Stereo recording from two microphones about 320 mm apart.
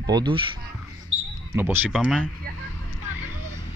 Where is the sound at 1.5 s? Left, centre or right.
Centre.